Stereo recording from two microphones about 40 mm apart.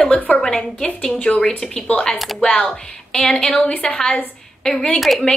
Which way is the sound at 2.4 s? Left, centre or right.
Left.